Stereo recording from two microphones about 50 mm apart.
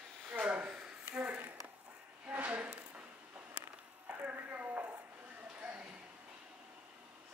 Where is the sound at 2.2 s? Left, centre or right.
Right.